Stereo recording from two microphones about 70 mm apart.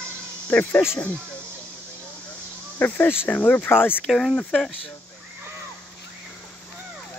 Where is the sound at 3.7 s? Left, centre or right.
Left.